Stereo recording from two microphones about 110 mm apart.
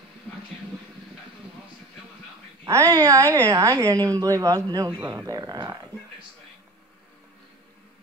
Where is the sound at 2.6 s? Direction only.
25° right (ahead or behind).